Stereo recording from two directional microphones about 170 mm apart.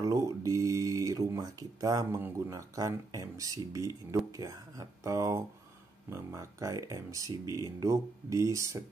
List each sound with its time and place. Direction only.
0.0 s speech: 20° right (ahead or behind)